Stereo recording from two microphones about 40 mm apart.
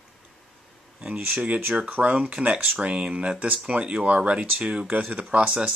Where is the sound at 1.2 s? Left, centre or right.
Right.